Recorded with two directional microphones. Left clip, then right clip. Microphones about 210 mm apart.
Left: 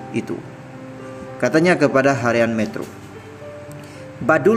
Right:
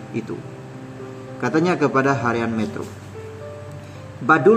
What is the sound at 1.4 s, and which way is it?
A man's voice, 20° left (ahead or behind).